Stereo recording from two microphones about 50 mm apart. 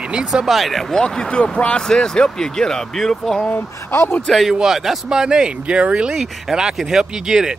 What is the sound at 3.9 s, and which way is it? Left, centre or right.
Speech, left.